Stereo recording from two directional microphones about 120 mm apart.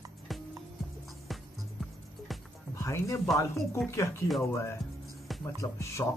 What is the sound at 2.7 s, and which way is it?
Speech, 25° left (ahead or behind).